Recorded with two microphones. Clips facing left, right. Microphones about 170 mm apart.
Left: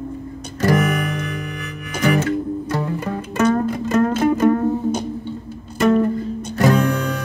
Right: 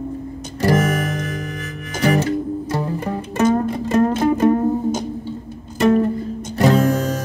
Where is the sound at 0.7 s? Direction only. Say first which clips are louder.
Right 1 dB; 45° right (ahead or behind); by 4.6 s 25° right (ahead or behind).